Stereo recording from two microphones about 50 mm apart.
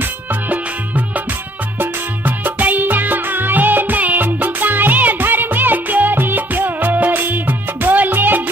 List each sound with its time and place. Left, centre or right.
0.0 s music: right